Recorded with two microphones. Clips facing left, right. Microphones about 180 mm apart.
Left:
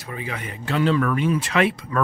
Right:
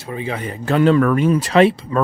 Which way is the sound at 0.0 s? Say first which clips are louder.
Right 7 dB; 30° right (ahead or behind).